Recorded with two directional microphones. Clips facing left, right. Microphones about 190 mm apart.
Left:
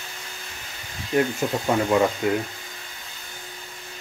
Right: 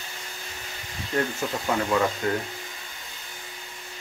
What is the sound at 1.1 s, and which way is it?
Speech, 20° left (ahead or behind).